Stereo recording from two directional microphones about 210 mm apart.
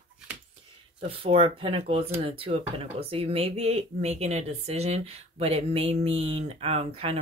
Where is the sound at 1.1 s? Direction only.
25° right (ahead or behind).